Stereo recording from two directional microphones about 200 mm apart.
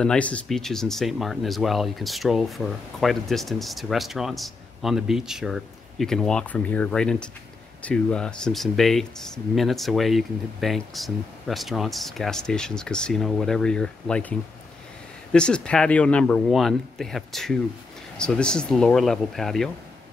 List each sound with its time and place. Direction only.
0.0 s speech: 5° left (ahead or behind)
15.3 s speech: 5° left (ahead or behind)